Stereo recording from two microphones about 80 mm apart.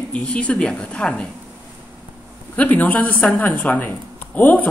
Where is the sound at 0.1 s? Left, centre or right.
Centre.